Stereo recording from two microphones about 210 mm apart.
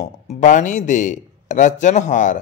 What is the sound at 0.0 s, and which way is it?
A man's voice, 35° left (ahead or behind).